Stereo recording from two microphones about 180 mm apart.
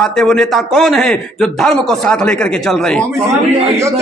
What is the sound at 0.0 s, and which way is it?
A man's voice, 5° left (ahead or behind).